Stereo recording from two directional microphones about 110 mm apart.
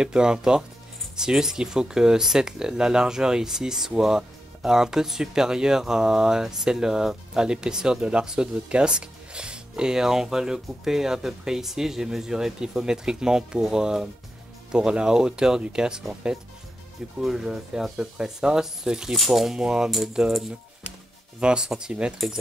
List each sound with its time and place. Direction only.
0.0 s speech: 5° right (ahead or behind)